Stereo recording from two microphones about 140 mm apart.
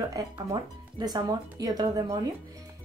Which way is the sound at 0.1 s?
25° right (ahead or behind).